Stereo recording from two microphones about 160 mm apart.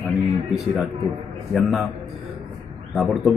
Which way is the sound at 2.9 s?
Centre (ahead or behind).